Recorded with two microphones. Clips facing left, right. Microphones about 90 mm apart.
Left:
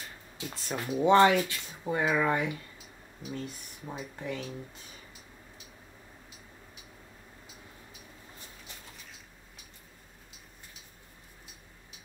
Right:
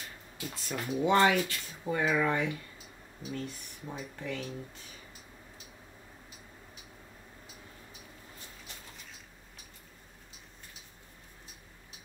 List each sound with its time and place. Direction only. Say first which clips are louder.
0.7 s speech: left 4 dB; 35° left (ahead or behind); by 4.6 s 15° left (ahead or behind)